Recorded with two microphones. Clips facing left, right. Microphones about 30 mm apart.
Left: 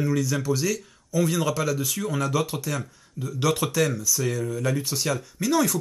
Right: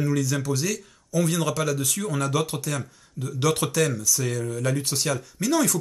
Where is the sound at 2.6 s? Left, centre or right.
Centre.